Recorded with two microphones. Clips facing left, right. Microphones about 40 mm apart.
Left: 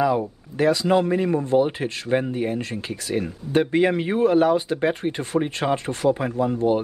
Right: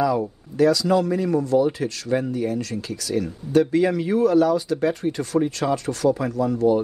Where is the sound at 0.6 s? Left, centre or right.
Left.